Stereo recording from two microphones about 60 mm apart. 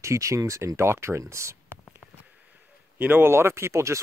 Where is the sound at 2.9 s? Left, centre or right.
Right.